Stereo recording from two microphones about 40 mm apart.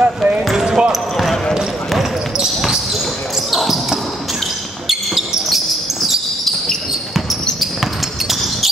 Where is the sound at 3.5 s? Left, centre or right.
Centre.